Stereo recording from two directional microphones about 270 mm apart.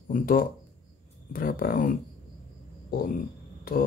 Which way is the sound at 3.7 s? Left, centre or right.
Left.